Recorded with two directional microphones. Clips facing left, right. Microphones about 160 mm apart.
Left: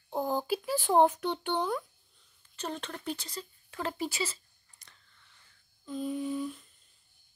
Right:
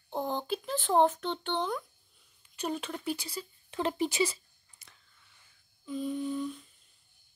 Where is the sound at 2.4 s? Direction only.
10° right (ahead or behind).